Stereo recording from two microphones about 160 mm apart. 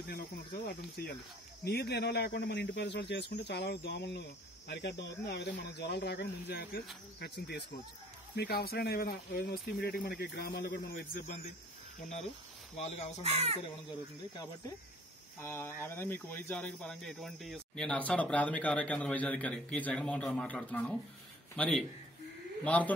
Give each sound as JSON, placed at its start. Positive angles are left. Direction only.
{"t": 0.7, "sound": "a man's voice", "side_deg": 75}
{"t": 1.6, "sound": "speech", "side_deg": 90}
{"t": 8.4, "sound": "speech", "side_deg": 75}
{"t": 10.6, "sound": "a man's voice", "side_deg": 70}
{"t": 12.7, "sound": "speech", "side_deg": 45}
{"t": 13.2, "sound": "speech", "side_deg": -40}
{"t": 15.4, "sound": "a man's voice", "side_deg": 15}